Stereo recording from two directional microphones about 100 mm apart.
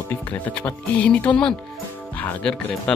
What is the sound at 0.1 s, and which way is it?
Speech, 15° left (ahead or behind).